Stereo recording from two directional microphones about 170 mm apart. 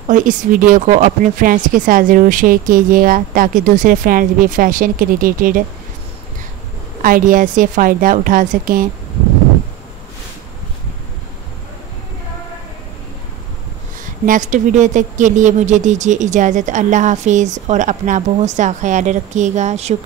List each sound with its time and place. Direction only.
0.1 s speech: 50° right (ahead or behind)
7.0 s speech: 55° right (ahead or behind)
14.2 s speech: 50° right (ahead or behind)